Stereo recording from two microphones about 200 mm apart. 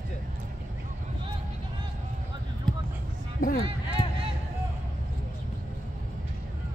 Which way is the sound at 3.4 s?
45° left (ahead or behind).